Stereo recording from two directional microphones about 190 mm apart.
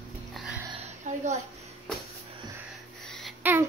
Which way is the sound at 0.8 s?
35° right (ahead or behind).